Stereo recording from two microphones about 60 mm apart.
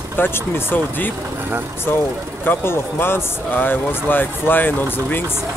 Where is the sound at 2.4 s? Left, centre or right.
Left.